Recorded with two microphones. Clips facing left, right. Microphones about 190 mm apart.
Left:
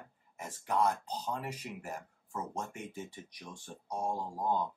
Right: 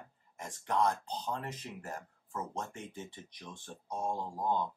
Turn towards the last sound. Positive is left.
turn(degrees=10)  # may be behind; listen again after turning